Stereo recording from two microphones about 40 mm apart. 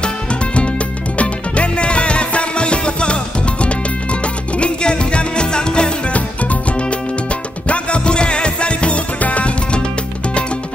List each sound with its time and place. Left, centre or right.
0.0 s music: left
6.1 s music: left